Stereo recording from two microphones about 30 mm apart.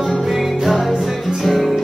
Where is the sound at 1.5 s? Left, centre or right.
Centre.